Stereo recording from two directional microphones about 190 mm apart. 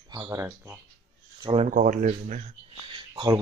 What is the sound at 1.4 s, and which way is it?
Speech, 35° right (ahead or behind).